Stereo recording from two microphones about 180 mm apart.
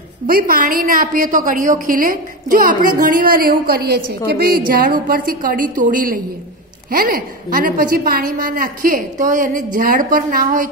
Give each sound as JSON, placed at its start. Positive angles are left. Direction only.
{"t": 0.3, "sound": "a woman's voice", "side_deg": -50}